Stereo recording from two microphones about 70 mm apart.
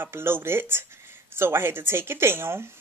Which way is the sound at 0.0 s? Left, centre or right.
Right.